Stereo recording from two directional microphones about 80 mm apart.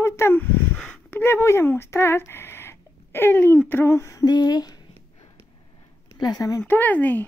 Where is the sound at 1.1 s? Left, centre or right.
Left.